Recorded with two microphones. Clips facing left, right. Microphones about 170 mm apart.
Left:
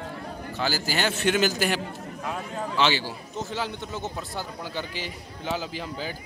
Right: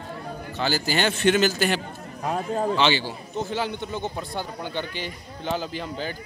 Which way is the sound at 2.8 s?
5° left (ahead or behind).